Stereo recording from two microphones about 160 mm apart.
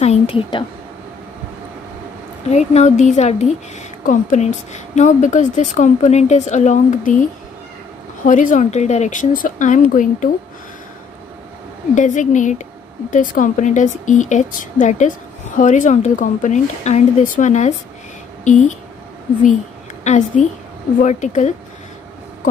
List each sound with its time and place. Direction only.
0.0 s a woman's voice: 40° left (ahead or behind)
2.5 s speech: 45° left (ahead or behind)
11.9 s speech: 50° left (ahead or behind)
20.0 s a woman's voice: 50° left (ahead or behind)